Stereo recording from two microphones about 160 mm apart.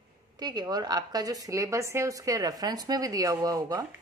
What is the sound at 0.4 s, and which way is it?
A woman's voice, 25° right (ahead or behind).